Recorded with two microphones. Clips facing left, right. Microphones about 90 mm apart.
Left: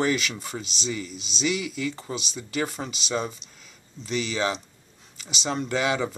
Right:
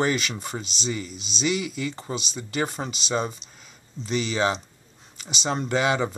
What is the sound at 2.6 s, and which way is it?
Speech, 25° right (ahead or behind).